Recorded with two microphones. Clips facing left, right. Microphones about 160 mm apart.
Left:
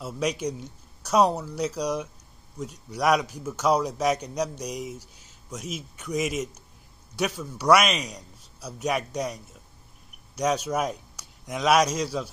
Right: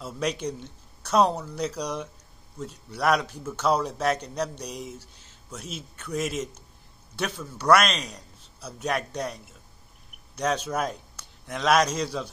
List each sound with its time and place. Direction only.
0.0 s a man's voice: 10° left (ahead or behind)